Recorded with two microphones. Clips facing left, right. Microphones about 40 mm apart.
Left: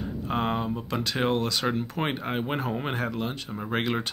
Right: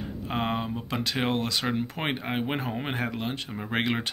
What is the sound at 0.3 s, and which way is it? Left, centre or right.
Speech, centre.